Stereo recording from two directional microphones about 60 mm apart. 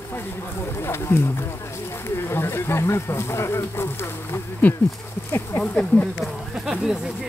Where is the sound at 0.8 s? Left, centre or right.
Left.